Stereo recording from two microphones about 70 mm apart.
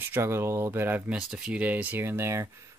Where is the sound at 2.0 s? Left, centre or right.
Right.